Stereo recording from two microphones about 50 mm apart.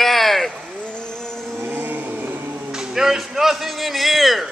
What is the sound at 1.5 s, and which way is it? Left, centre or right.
Music, right.